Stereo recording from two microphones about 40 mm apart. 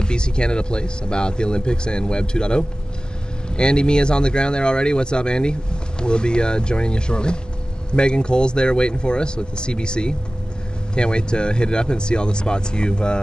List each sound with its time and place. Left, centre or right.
0.0 s speech: left